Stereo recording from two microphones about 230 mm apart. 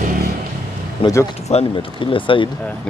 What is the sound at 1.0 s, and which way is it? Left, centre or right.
Speech, left.